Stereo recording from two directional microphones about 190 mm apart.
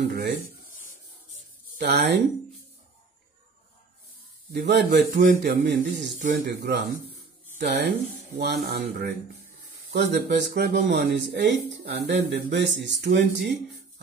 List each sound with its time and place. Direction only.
0.1 s speech: 60° right (ahead or behind)
1.8 s speech: 60° right (ahead or behind)
4.5 s speech: 60° right (ahead or behind)